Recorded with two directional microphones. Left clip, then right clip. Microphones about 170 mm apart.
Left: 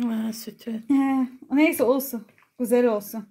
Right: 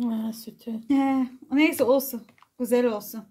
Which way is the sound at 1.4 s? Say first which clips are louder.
Left 2 dB; 40° left (ahead or behind).